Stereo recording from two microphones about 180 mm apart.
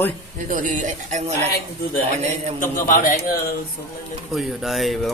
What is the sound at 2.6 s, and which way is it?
Speech, 50° left (ahead or behind).